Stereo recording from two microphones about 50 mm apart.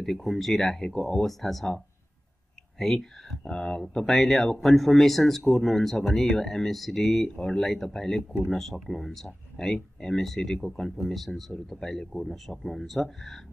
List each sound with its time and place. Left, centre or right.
0.0 s speech: centre
0.8 s speech: centre
1.4 s speech: centre
2.8 s speech: centre
3.4 s speech: centre
3.9 s speech: centre
7.3 s speech: centre